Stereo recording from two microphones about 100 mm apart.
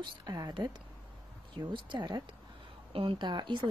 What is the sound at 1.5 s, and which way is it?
Speech, 50° right (ahead or behind).